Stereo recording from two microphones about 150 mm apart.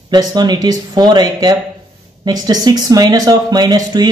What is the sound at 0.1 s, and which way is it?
Speech, 30° right (ahead or behind).